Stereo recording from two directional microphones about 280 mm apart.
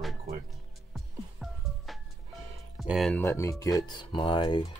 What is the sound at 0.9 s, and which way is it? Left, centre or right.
Music, centre.